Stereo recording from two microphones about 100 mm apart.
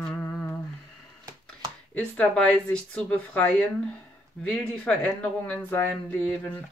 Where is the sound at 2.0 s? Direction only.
10° left (ahead or behind).